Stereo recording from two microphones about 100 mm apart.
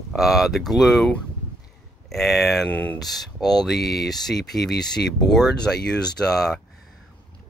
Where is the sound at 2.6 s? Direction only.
15° left (ahead or behind).